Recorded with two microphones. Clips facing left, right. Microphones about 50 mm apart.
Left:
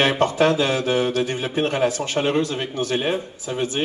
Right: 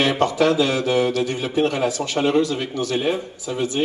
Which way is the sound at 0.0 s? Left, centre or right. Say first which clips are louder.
Even; left.